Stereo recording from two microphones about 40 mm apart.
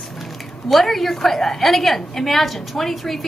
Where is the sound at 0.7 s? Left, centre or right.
Centre.